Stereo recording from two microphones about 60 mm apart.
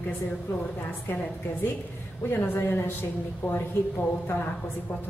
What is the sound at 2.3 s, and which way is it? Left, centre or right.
Speech, left.